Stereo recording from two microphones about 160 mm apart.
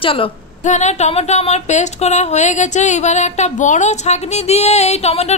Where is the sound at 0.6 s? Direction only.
45° left (ahead or behind).